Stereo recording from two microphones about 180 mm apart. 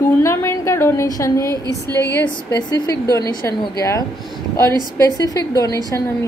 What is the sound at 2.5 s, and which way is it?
A woman's voice, 20° left (ahead or behind).